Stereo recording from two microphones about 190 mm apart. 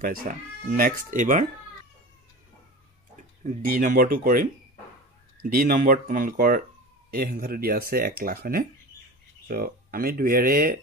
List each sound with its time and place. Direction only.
0.0 s speech: 50° right (ahead or behind)
3.4 s speech: 45° right (ahead or behind)